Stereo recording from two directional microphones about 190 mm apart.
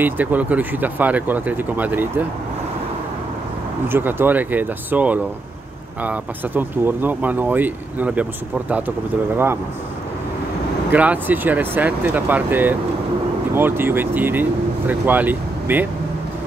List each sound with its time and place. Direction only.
0.0 s speech: 10° right (ahead or behind)
3.9 s speech: 10° right (ahead or behind)
10.9 s speech: 10° right (ahead or behind)